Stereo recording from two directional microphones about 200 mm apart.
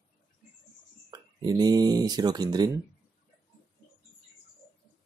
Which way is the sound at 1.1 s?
20° right (ahead or behind).